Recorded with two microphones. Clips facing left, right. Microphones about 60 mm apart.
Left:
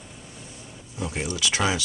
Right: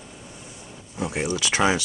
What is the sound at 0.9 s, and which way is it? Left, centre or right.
Speech, centre.